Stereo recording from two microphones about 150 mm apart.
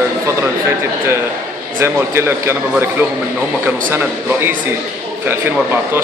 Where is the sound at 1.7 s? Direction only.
15° right (ahead or behind).